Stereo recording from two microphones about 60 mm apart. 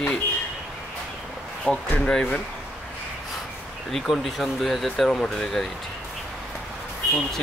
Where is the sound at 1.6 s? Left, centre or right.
Centre.